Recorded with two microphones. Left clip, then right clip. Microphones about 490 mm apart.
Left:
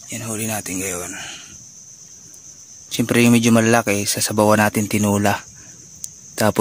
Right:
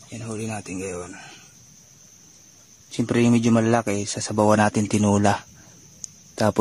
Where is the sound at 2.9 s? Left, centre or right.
Right.